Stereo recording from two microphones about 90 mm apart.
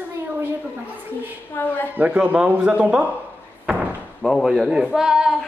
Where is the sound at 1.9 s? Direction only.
15° right (ahead or behind).